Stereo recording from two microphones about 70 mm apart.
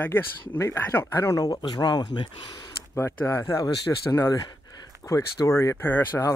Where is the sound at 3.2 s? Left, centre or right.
Left.